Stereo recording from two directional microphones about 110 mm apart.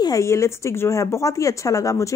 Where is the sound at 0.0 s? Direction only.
30° left (ahead or behind).